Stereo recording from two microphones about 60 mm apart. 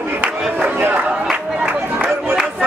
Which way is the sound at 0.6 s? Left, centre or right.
Right.